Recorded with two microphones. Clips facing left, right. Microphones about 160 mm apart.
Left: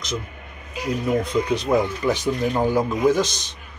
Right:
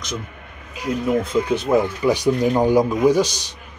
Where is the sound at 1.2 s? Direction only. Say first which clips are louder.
Right 2 dB; 5° right (ahead or behind).